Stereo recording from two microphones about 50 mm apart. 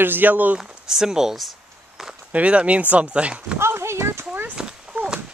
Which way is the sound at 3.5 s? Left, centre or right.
Right.